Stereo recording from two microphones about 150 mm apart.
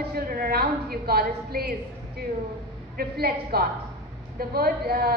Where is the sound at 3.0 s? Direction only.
90° right.